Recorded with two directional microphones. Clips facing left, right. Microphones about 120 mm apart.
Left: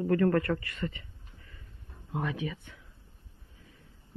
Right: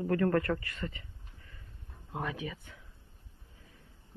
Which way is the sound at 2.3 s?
30° right (ahead or behind).